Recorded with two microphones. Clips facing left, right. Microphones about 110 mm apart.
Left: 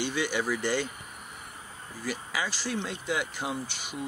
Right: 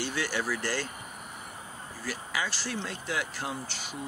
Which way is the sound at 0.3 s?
15° left (ahead or behind).